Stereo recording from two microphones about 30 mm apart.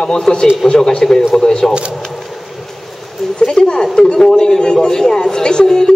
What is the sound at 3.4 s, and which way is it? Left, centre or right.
A man's voice, left.